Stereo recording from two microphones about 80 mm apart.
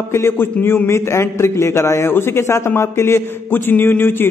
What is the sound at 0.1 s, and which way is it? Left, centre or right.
A man's voice, left.